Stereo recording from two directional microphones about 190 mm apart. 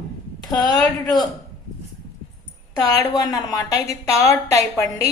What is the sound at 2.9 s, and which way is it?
A woman's voice, 20° left (ahead or behind).